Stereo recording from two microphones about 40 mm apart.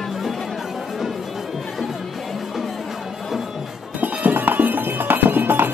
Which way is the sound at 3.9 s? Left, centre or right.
Right.